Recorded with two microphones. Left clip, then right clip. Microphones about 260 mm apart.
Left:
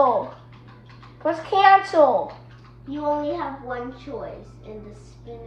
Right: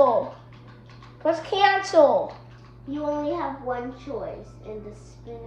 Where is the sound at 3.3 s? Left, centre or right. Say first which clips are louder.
Right 1 dB; centre.